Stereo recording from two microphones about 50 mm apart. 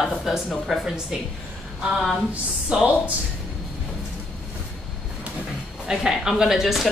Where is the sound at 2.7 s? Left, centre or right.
Right.